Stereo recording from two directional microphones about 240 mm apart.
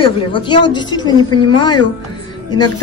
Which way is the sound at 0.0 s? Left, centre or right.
Centre.